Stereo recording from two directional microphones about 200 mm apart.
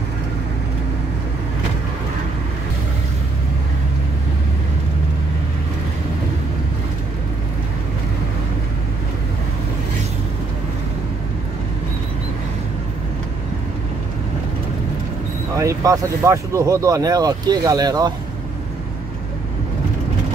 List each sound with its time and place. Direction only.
15.5 s speech: 15° right (ahead or behind)